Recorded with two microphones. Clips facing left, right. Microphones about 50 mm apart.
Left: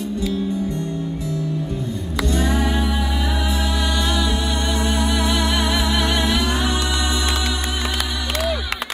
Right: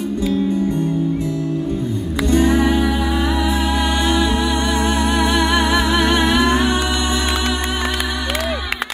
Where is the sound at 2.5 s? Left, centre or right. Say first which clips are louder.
Right 5 dB; right.